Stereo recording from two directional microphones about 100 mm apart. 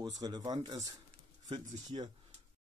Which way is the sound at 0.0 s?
45° right (ahead or behind).